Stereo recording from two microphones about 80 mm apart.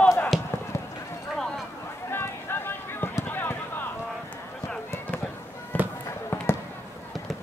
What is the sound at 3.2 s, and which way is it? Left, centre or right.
Run, left.